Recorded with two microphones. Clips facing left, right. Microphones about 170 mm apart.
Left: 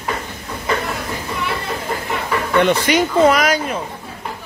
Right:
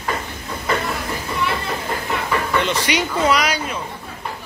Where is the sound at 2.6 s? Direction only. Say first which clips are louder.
Left 6 dB; 55° left (ahead or behind).